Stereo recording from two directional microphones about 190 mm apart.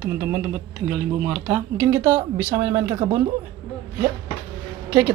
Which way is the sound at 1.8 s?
15° right (ahead or behind).